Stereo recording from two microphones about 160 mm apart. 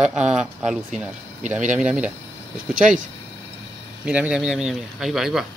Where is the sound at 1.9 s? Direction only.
5° right (ahead or behind).